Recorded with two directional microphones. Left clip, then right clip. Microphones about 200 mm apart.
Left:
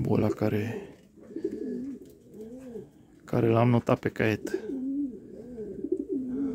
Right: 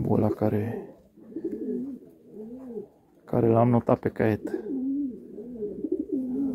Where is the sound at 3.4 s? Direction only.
20° left (ahead or behind).